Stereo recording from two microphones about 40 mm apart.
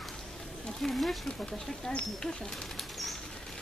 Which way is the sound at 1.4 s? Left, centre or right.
Centre.